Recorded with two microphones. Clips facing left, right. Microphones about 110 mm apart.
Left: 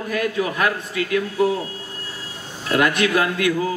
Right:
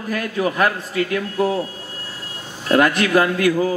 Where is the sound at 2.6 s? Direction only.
40° right (ahead or behind).